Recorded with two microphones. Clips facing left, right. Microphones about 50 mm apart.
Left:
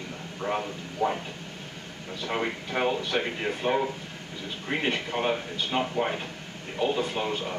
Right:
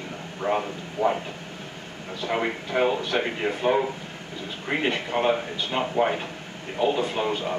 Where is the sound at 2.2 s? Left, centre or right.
Right.